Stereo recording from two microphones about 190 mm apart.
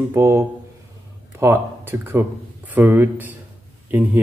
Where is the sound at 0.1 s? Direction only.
15° right (ahead or behind).